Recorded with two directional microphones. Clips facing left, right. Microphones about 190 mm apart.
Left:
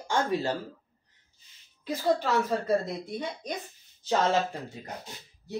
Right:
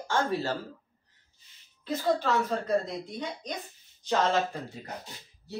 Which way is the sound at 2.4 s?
5° left (ahead or behind).